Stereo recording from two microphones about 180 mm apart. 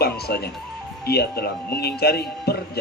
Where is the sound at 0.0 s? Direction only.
60° left (ahead or behind).